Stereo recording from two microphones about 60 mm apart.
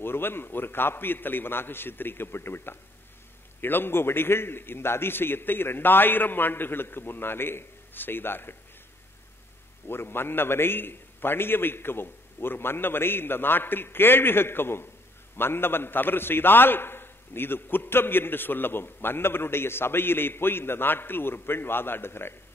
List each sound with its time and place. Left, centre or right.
0.0 s a man's voice: left
9.8 s a man's voice: left